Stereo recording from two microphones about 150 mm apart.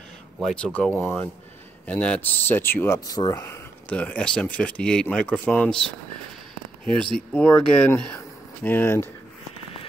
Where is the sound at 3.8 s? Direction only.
10° left (ahead or behind).